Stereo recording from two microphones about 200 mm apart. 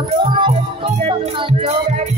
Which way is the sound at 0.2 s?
25° right (ahead or behind).